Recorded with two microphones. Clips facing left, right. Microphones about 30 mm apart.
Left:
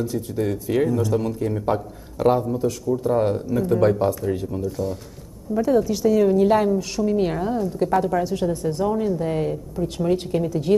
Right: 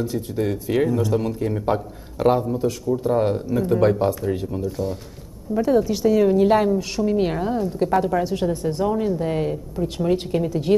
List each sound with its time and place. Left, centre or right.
0.0 s a woman's voice: right